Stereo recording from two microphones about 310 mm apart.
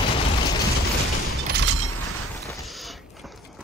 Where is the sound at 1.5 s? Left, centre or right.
Right.